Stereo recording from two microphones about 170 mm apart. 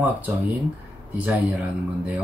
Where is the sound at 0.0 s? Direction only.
10° right (ahead or behind).